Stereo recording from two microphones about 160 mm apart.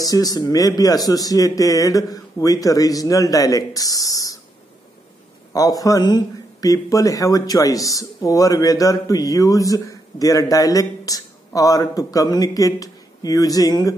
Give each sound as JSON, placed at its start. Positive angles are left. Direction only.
{"t": 0.0, "sound": "speech", "side_deg": 25}
{"t": 5.5, "sound": "speech", "side_deg": 20}